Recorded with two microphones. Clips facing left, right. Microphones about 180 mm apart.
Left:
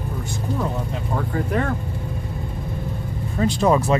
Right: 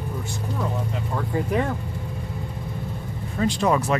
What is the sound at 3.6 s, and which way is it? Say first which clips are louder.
Speech: left 4 dB; 25° left (ahead or behind).